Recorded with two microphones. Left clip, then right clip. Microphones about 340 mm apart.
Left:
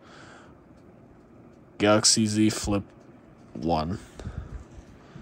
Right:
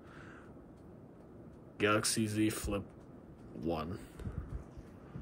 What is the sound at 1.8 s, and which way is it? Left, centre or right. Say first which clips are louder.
Speech: left 11 dB; centre.